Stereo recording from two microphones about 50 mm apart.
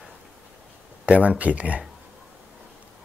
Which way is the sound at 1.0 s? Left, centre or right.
Right.